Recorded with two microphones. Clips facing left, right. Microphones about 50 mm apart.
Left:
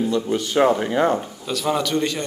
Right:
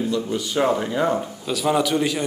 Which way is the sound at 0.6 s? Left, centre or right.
Left.